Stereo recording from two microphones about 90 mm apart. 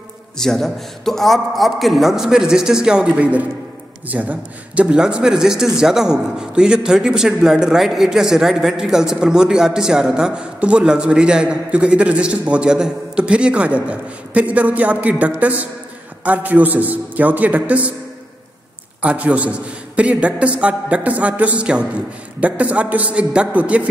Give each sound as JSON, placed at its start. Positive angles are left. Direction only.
{"t": 0.4, "sound": "a man's voice", "side_deg": 5}
{"t": 19.0, "sound": "a man's voice", "side_deg": -15}